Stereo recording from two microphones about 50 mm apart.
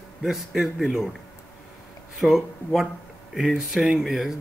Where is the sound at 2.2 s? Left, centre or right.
Centre.